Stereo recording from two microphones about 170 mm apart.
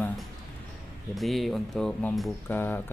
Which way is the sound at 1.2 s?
Centre (ahead or behind).